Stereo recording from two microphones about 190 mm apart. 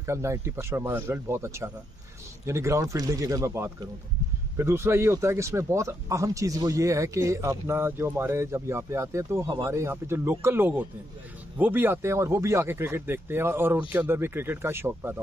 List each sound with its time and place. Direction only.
0.0 s speech: 15° right (ahead or behind)